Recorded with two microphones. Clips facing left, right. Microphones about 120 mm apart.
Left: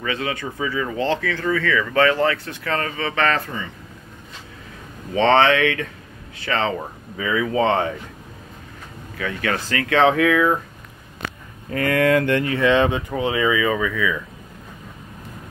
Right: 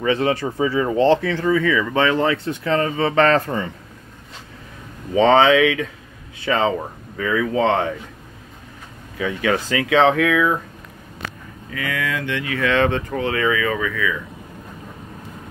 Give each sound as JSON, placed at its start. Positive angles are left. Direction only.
{"t": 0.0, "sound": "speech", "side_deg": -30}
{"t": 5.1, "sound": "speech", "side_deg": -10}
{"t": 7.2, "sound": "speech", "side_deg": 5}
{"t": 9.2, "sound": "speech", "side_deg": -15}
{"t": 9.9, "sound": "speech", "side_deg": 0}
{"t": 11.7, "sound": "speech", "side_deg": 50}
{"t": 12.5, "sound": "speech", "side_deg": 20}